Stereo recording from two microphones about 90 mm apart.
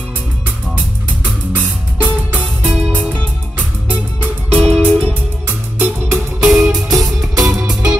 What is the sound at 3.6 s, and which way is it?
Music, 20° right (ahead or behind).